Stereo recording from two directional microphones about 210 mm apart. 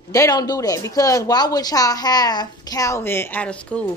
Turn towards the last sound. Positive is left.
turn(degrees=5)  # may be behind; listen again after turning